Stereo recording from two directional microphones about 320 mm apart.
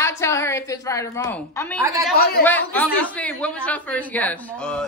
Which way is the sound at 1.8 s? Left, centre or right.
Centre.